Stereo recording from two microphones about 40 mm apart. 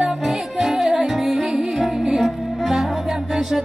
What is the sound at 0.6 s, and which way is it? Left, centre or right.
Music, centre.